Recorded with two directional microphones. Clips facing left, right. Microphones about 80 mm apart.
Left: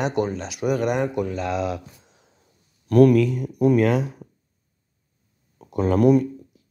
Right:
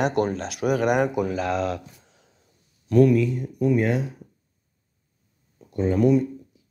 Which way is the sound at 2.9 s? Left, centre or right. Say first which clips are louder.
Left 3 dB; left.